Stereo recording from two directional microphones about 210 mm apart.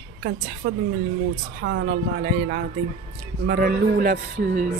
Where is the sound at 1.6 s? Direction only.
55° right (ahead or behind).